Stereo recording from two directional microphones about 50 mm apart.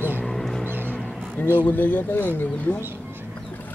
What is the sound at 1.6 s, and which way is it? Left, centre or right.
Speech, left.